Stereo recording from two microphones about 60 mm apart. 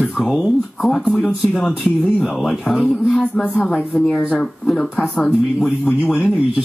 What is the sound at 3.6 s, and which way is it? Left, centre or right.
Speech, left.